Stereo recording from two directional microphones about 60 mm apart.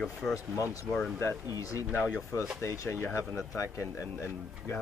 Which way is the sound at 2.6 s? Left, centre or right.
Left.